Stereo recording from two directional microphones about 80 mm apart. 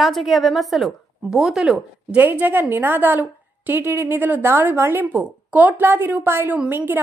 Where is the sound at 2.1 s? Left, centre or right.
Right.